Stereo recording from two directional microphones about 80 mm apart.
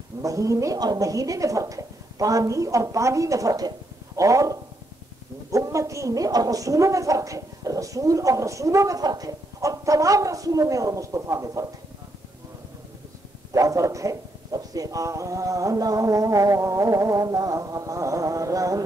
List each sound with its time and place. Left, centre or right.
0.2 s a woman's voice: right
13.5 s a woman's voice: right